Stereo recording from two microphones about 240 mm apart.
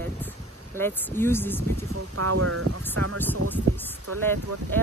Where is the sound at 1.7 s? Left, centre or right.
Right.